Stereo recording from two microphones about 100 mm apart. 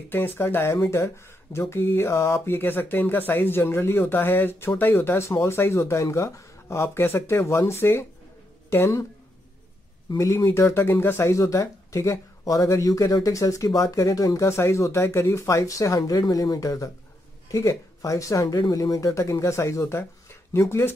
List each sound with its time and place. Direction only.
0.1 s speech: 25° left (ahead or behind)
10.0 s speech: 30° left (ahead or behind)